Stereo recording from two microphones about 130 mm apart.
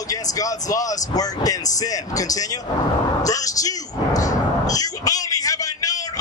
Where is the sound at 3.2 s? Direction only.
25° left (ahead or behind).